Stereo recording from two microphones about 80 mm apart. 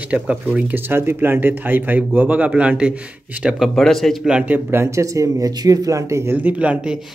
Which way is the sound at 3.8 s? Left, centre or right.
Centre.